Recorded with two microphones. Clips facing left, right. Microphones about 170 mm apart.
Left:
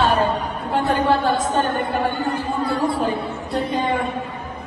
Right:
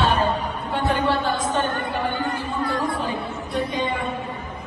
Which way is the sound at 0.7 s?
40° left (ahead or behind).